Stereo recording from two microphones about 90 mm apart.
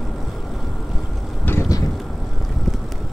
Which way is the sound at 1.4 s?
25° left (ahead or behind).